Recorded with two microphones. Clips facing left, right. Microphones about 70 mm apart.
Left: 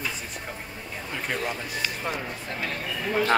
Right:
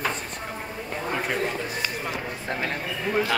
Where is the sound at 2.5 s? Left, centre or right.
Right.